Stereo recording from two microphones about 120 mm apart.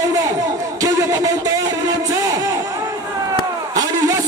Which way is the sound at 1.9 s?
30° right (ahead or behind).